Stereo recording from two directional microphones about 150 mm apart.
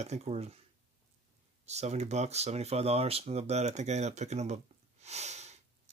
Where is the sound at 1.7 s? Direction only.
45° right (ahead or behind).